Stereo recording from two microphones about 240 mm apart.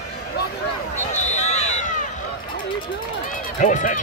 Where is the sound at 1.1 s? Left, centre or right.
Left.